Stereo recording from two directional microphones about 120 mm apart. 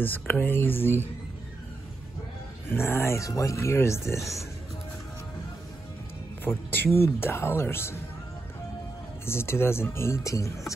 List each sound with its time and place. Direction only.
0.0 s speech: 15° left (ahead or behind)
2.7 s speech: 20° left (ahead or behind)
6.4 s speech: 15° left (ahead or behind)
9.2 s speech: 20° left (ahead or behind)